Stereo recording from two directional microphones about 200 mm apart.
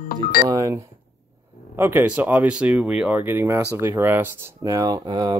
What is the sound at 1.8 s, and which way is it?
Speech, 10° right (ahead or behind).